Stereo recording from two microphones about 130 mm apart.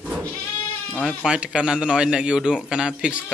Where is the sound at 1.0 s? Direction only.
5° right (ahead or behind).